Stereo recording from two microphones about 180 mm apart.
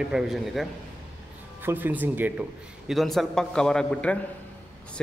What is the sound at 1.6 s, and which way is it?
Speech, 10° right (ahead or behind).